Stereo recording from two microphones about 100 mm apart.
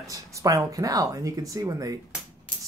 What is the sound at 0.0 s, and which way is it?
Speech, 35° right (ahead or behind).